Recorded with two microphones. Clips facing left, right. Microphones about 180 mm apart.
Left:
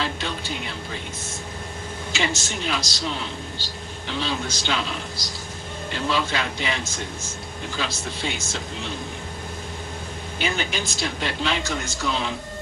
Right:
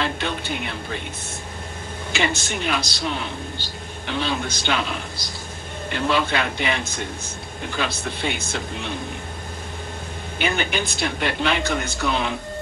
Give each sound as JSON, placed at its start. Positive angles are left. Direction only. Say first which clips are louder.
{"t": 0.0, "sound": "a sound", "louder": "right 3 dB", "side_deg": -60}
{"t": 2.1, "sound": "a man's voice", "louder": "right 3 dB", "side_deg": -55}
{"t": 10.4, "sound": "speech", "louder": "right 3 dB", "side_deg": -60}